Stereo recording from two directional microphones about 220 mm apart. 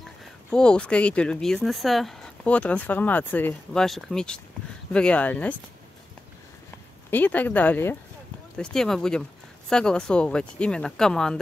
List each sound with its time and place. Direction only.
0.0 s speech: centre (ahead or behind)
7.1 s speech: 10° left (ahead or behind)